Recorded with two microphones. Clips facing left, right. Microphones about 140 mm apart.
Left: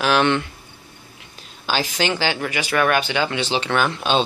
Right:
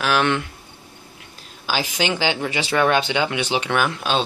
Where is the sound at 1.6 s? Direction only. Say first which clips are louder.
Left 1 dB; 10° right (ahead or behind).